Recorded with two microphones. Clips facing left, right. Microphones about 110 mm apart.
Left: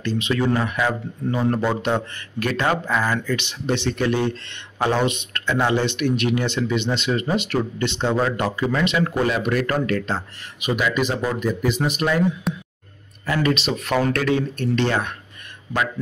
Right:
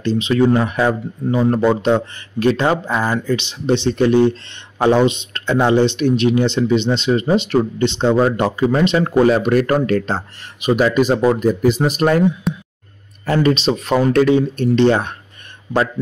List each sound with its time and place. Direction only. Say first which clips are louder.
0.0 s speech: right 7 dB; 25° right (ahead or behind)
8.7 s speech: right 7 dB; 35° right (ahead or behind)
12.5 s a sound: right 4 dB; centre (ahead or behind)
13.2 s speech: right 6 dB; 35° right (ahead or behind)